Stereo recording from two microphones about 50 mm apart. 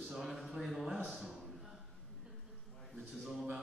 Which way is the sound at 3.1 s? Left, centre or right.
Centre.